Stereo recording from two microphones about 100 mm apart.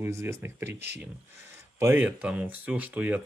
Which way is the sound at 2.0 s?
15° right (ahead or behind).